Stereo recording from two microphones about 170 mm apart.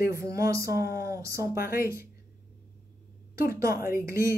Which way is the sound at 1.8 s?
15° right (ahead or behind).